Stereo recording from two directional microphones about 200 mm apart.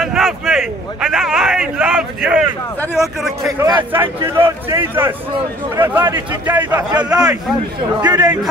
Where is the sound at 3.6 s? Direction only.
20° right (ahead or behind).